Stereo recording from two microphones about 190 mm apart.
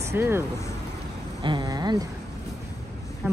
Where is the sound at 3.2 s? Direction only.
10° right (ahead or behind).